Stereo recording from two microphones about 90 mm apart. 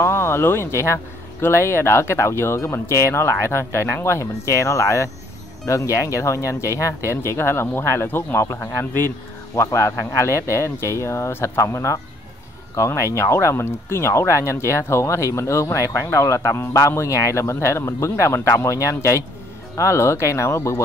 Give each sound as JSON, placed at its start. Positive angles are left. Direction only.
{"t": 0.0, "sound": "speech", "side_deg": 30}